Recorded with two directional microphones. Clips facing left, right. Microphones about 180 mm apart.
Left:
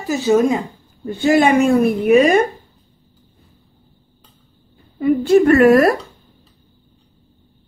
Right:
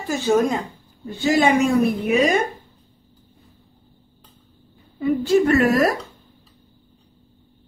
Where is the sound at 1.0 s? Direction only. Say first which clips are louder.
Left 5 dB; 55° left (ahead or behind).